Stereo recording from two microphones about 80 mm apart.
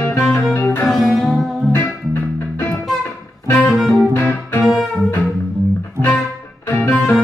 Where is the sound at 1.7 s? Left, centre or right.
Left.